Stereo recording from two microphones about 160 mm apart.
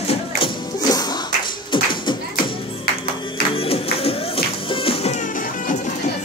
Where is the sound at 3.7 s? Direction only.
35° left (ahead or behind).